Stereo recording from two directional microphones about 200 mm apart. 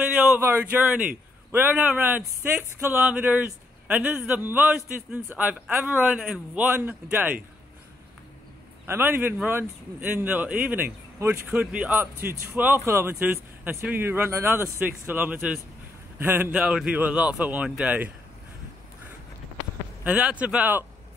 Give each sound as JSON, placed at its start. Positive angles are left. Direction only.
{"t": 0.1, "sound": "a man's voice", "side_deg": -10}
{"t": 8.8, "sound": "a man's voice", "side_deg": -10}
{"t": 20.0, "sound": "a man's voice", "side_deg": -5}